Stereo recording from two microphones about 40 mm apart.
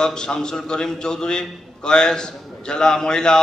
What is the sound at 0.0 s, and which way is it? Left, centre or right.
A man's voice, centre.